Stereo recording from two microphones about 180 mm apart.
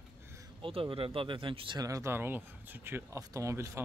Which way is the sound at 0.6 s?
30° right (ahead or behind).